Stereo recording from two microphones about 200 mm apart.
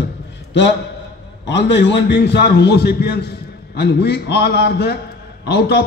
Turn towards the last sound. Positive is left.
turn(degrees=55)  # may be behind; listen again after turning